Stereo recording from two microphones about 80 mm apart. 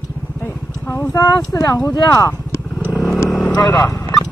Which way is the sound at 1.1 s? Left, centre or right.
Left.